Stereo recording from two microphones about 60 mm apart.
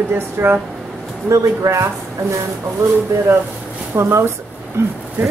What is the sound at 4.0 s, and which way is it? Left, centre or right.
Speech, right.